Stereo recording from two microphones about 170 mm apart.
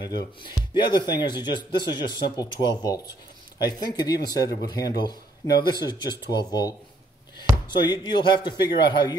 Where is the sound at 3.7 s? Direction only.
25° left (ahead or behind).